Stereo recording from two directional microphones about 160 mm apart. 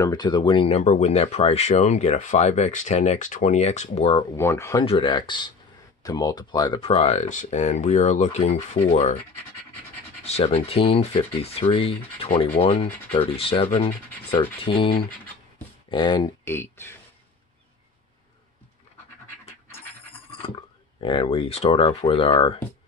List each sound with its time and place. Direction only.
0.0 s speech: 25° left (ahead or behind)
4.4 s speech: 15° left (ahead or behind)
4.8 s speech: 30° left (ahead or behind)
10.2 s speech: 40° left (ahead or behind)
16.4 s speech: 15° left (ahead or behind)
20.1 s speech: 35° left (ahead or behind)